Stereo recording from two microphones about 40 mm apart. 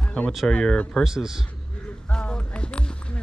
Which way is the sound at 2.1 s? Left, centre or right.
Left.